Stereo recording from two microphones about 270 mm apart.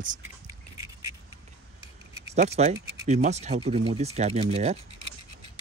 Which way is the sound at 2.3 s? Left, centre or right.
Right.